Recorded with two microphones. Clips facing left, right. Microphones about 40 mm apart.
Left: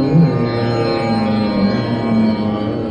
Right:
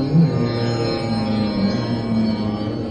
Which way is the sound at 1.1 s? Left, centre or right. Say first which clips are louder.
Left 5 dB; left.